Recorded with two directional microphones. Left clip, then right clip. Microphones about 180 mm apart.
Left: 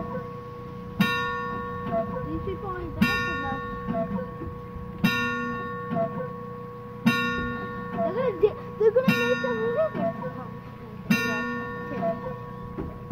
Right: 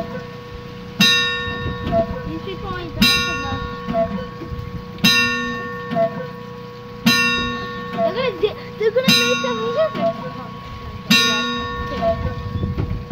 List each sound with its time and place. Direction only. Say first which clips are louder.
0.9 s church bell: right 11 dB; 5° right (ahead or behind)
3.0 s music: right 9 dB; 5° right (ahead or behind)
5.0 s music: right 10 dB; 5° right (ahead or behind)
7.1 s music: right 9 dB; 5° right (ahead or behind)
8.4 s a sound: right 2 dB; 10° left (ahead or behind)
9.0 s music: right 8 dB; 5° right (ahead or behind)
11.1 s music: right 10 dB; 5° right (ahead or behind)